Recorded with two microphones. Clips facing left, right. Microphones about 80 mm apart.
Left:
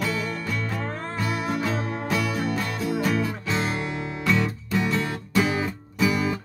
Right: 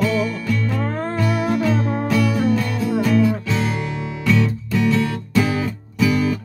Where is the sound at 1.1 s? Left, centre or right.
Centre.